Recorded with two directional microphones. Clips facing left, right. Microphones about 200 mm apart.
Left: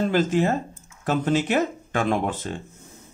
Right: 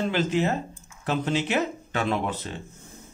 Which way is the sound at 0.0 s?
45° left (ahead or behind).